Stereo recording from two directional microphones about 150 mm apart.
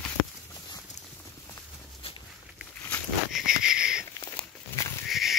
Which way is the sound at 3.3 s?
5° right (ahead or behind).